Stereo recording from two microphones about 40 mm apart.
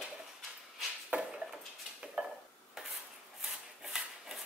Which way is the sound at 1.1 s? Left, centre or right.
Right.